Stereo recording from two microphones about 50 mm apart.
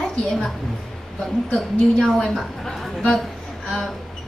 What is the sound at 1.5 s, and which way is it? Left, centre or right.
A woman's voice, centre.